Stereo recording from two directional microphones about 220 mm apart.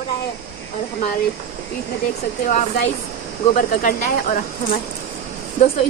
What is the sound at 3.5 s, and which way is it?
Speech, 40° left (ahead or behind).